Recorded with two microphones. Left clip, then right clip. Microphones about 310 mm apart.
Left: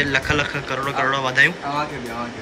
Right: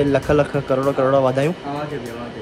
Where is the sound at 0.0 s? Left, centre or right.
Centre.